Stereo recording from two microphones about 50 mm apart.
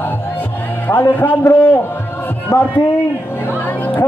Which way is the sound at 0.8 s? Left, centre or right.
Left.